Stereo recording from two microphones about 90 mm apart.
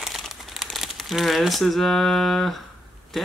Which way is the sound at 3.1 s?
Centre (ahead or behind).